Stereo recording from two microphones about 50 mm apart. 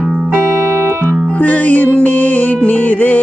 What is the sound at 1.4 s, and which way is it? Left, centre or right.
Music, left.